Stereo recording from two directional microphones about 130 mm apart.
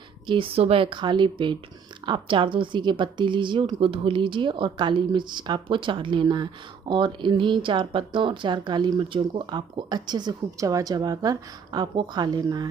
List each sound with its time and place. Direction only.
0.3 s a woman's voice: 45° right (ahead or behind)